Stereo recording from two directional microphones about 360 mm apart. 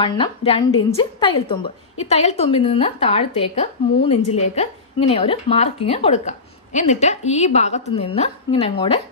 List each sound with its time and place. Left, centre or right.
0.0 s a woman's voice: centre